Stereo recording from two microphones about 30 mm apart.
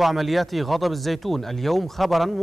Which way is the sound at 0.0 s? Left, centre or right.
Centre.